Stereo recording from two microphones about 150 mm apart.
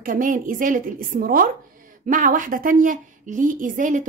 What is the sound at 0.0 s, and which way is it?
A woman's voice, 65° right (ahead or behind).